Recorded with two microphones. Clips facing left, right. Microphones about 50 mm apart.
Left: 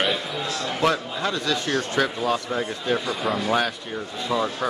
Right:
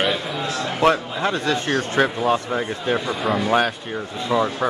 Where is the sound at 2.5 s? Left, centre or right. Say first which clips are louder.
Right 2 dB; centre.